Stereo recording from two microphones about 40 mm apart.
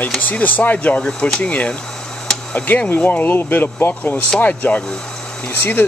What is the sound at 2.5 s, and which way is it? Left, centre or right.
Speech, left.